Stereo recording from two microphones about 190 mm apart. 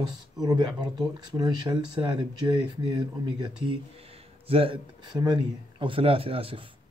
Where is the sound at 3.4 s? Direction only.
30° right (ahead or behind).